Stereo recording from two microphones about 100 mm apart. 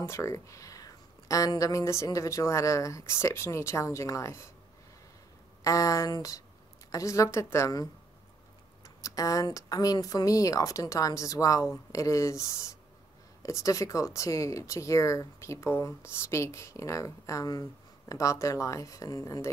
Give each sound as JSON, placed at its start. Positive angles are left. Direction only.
{"t": 0.0, "sound": "speech", "side_deg": 30}
{"t": 5.6, "sound": "speech", "side_deg": 35}